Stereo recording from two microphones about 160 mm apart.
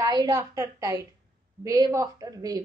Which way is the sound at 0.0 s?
25° right (ahead or behind).